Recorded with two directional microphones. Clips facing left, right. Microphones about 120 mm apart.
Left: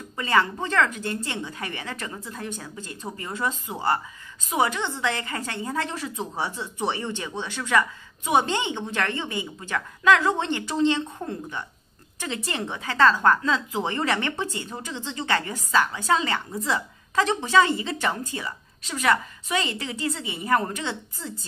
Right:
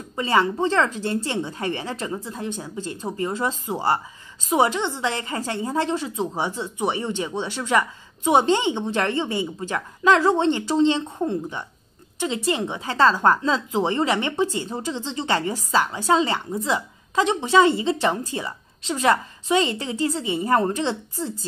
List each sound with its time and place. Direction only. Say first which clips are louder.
0.1 s a woman's voice: right 2 dB; 25° right (ahead or behind)